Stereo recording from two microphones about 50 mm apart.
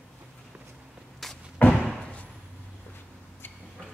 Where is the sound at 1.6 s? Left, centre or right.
Left.